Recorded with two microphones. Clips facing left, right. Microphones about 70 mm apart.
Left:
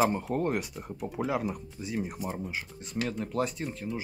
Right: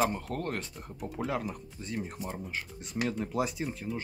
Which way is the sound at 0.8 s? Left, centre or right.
Centre.